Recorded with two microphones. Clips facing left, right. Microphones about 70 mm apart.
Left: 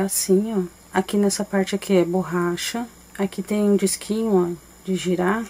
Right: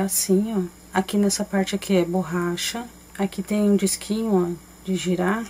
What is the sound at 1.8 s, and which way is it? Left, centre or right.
Speech, left.